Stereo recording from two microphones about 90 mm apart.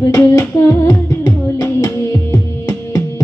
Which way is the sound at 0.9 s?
30° left (ahead or behind).